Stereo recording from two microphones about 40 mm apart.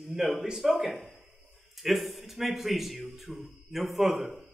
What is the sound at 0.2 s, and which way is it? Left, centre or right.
A man's voice, centre.